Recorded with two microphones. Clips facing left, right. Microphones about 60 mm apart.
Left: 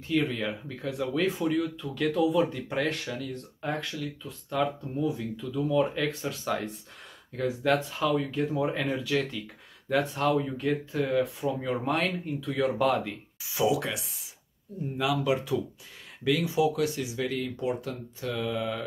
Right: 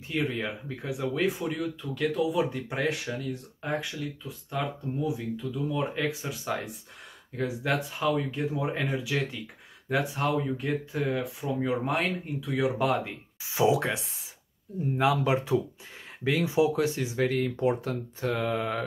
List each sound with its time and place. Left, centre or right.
0.2 s speech: centre
13.4 s speech: right